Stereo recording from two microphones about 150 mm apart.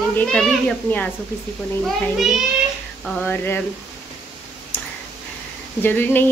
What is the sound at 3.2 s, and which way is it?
Speech, 15° left (ahead or behind).